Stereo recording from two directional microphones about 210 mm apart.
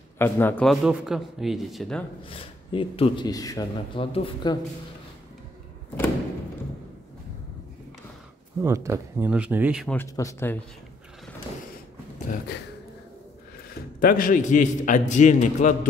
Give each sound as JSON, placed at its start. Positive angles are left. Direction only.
{"t": 0.2, "sound": "a man's voice", "side_deg": 10}
{"t": 2.2, "sound": "speech", "side_deg": 25}
{"t": 8.5, "sound": "speech", "side_deg": -15}
{"t": 9.9, "sound": "speech", "side_deg": 15}
{"t": 13.9, "sound": "a man's voice", "side_deg": 40}